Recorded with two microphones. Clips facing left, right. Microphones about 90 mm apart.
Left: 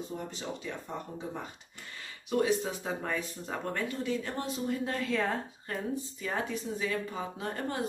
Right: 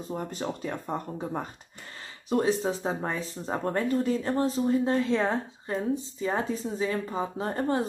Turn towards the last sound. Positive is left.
turn(degrees=-35)  # may be behind; listen again after turning